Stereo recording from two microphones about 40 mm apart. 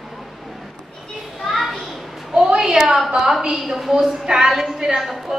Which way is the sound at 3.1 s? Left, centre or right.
Centre.